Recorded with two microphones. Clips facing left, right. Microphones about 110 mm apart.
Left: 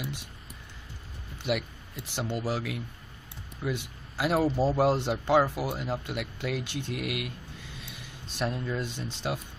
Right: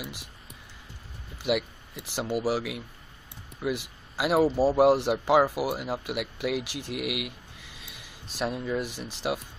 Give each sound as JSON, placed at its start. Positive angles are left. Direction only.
{"t": 1.4, "sound": "speech", "side_deg": -10}
{"t": 6.6, "sound": "speech", "side_deg": -90}
{"t": 6.9, "sound": "a sound", "side_deg": -10}
{"t": 9.0, "sound": "speech", "side_deg": -10}